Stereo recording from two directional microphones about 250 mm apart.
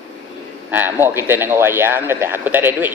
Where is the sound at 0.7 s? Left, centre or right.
Centre.